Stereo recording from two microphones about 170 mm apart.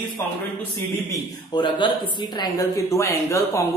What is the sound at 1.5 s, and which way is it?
Speech, 25° left (ahead or behind).